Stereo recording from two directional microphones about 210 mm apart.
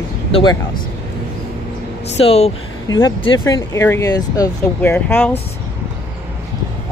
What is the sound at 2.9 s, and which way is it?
Speech, 15° left (ahead or behind).